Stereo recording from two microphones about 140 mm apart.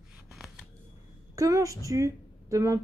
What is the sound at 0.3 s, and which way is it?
Scissors, centre (ahead or behind).